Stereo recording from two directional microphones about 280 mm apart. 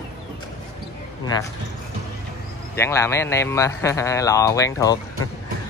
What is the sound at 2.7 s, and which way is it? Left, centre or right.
A man's voice, centre.